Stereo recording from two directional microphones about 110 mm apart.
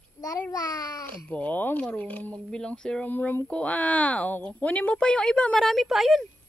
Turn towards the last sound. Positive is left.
turn(degrees=0)  # may be behind; listen again after turning